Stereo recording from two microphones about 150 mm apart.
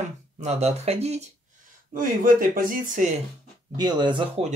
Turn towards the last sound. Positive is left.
turn(degrees=-35)  # may be behind; listen again after turning